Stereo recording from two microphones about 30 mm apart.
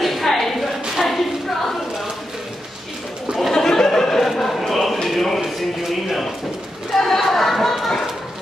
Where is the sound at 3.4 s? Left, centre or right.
Centre.